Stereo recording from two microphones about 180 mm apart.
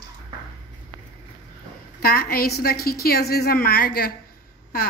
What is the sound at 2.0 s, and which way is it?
A woman's voice, 60° left (ahead or behind).